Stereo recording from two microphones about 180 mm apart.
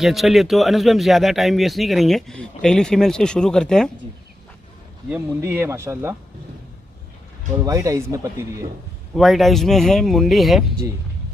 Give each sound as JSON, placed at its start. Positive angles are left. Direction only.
{"t": 0.0, "sound": "speech", "side_deg": 0}
{"t": 5.1, "sound": "speech", "side_deg": -10}
{"t": 7.6, "sound": "speech", "side_deg": -15}
{"t": 9.1, "sound": "speech", "side_deg": 0}